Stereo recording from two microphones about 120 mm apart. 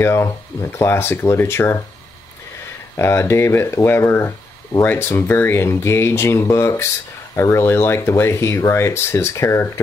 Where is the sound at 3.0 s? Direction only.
20° left (ahead or behind).